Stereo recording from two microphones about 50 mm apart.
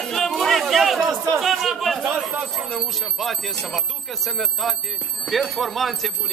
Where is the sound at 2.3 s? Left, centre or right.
Centre.